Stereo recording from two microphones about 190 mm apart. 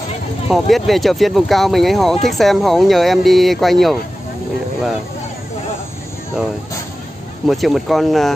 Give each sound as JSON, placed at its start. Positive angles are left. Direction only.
{"t": 0.5, "sound": "speech", "side_deg": 0}
{"t": 7.4, "sound": "speech", "side_deg": 0}